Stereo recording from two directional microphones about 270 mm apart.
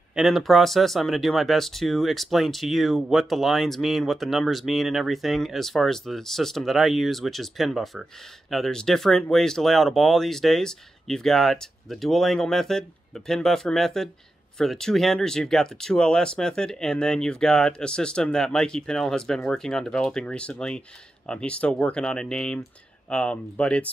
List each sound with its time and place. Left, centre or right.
0.1 s speech: centre